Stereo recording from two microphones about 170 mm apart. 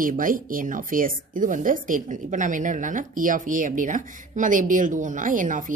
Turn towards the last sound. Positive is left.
turn(degrees=-50)  # may be behind; listen again after turning